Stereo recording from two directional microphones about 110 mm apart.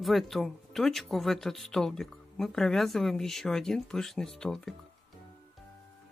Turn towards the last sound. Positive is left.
turn(degrees=5)  # may be behind; listen again after turning